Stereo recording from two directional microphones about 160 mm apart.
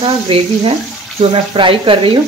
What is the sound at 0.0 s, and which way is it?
Speech, 35° right (ahead or behind).